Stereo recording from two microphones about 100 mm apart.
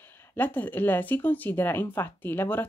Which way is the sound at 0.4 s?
20° left (ahead or behind).